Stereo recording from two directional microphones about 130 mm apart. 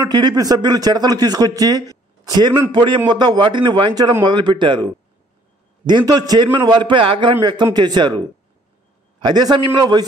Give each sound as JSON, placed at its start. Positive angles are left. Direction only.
{"t": 0.1, "sound": "speech", "side_deg": -30}
{"t": 9.2, "sound": "speech", "side_deg": -30}